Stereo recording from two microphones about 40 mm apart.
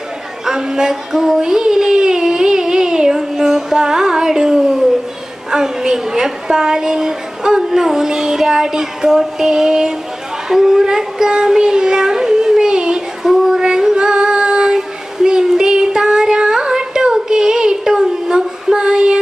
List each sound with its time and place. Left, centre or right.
0.5 s child singing: centre
3.7 s a sound: centre
5.5 s a woman's voice: centre
10.5 s child singing: centre
13.2 s female singing: centre